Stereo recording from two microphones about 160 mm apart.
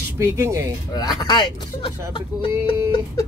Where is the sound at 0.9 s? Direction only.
25° left (ahead or behind).